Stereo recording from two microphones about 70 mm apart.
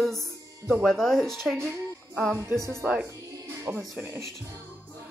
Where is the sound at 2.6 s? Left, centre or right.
Right.